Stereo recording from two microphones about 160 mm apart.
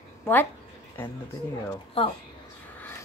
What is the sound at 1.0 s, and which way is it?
Speech, 15° left (ahead or behind).